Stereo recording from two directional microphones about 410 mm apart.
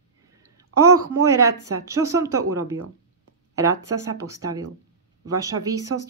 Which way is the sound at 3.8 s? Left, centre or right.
Right.